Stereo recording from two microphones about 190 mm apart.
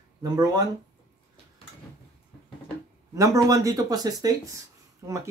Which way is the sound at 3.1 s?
15° right (ahead or behind).